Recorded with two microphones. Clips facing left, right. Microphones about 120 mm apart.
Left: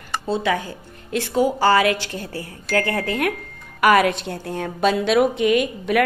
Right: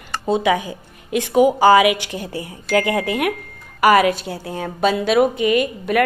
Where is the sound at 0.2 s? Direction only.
15° right (ahead or behind).